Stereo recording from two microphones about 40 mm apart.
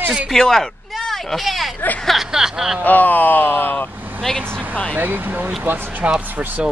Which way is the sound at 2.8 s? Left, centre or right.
Left.